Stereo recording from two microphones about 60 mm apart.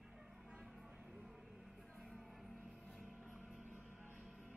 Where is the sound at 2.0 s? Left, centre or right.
Centre.